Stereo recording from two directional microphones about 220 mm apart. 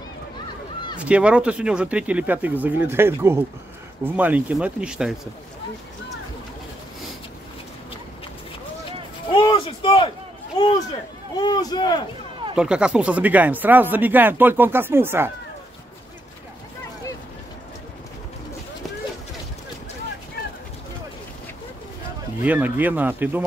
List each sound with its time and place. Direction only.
1.0 s speech: 5° right (ahead or behind)
9.3 s speech: 25° left (ahead or behind)
11.3 s speech: 20° left (ahead or behind)
12.5 s speech: 5° right (ahead or behind)
22.4 s speech: 5° right (ahead or behind)